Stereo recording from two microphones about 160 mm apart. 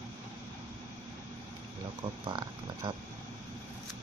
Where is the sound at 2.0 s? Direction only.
30° right (ahead or behind).